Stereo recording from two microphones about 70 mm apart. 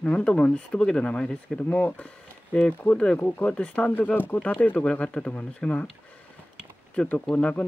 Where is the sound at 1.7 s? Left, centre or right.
Left.